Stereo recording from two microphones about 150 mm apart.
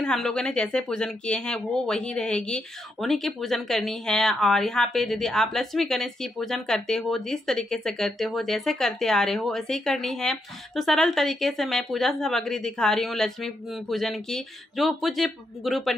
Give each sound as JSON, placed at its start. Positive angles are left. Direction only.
{"t": 0.0, "sound": "speech", "side_deg": 5}